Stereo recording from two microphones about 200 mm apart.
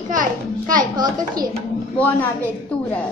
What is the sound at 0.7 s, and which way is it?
Speech, 20° right (ahead or behind).